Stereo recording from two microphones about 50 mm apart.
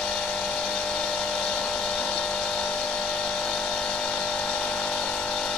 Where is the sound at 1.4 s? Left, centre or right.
Centre.